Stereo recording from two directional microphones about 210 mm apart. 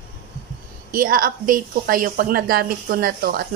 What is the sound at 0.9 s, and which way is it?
A woman's voice, 40° right (ahead or behind).